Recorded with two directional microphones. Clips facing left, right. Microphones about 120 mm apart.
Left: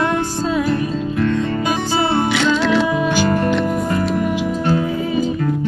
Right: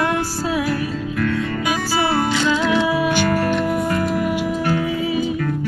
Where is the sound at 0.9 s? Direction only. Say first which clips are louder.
Left 3 dB; 25° left (ahead or behind).